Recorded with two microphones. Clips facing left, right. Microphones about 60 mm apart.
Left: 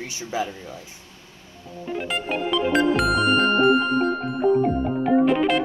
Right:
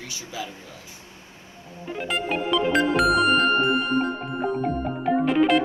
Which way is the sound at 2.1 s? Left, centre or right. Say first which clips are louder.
Right 1 dB; centre.